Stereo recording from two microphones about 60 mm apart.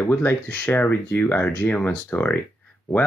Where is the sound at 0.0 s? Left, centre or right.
Left.